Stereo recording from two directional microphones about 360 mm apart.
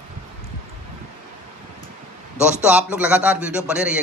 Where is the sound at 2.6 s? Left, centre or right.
Centre.